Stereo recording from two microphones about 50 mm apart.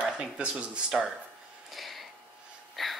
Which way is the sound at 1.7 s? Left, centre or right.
Centre.